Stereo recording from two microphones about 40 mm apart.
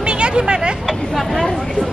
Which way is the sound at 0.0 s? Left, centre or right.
Right.